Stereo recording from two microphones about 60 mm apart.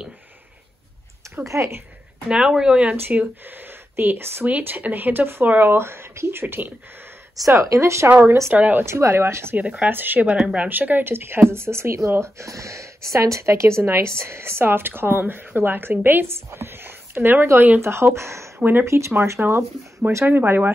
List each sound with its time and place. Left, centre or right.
1.4 s speech: right
2.2 s speech: centre
3.4 s speech: right
4.5 s speech: right
7.6 s speech: right
8.1 s speech: right
8.8 s speech: right
9.6 s speech: right
9.8 s speech: right
10.2 s speech: centre
10.7 s speech: right
18.6 s speech: right
18.9 s speech: right
20.2 s speech: right